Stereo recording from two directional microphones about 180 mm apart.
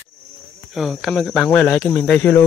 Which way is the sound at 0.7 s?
Centre (ahead or behind).